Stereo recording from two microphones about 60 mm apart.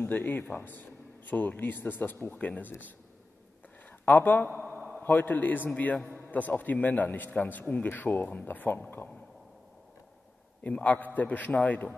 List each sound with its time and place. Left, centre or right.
0.0 s speech: left
4.0 s speech: left
10.6 s speech: left